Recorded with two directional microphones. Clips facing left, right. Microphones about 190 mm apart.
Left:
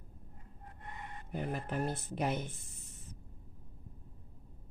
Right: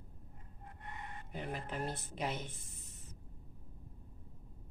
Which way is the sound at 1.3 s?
50° left (ahead or behind).